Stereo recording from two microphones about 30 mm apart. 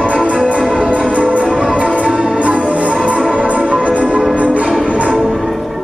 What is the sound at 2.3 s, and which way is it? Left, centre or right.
Music, right.